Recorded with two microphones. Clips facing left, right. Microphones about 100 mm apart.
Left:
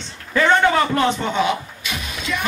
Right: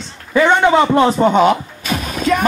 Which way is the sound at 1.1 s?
45° right (ahead or behind).